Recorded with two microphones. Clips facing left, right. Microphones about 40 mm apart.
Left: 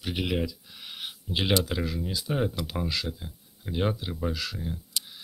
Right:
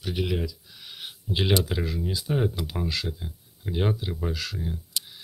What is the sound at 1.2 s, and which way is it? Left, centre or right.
Speech, centre.